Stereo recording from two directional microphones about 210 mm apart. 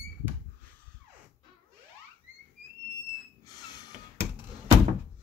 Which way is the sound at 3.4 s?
20° left (ahead or behind).